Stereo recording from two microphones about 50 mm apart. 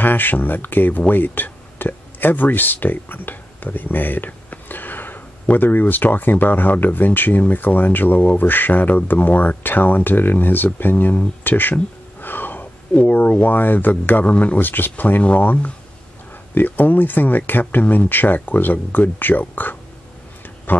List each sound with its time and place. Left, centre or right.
0.0 s speech: left
16.5 s speech: left
20.7 s a sound: left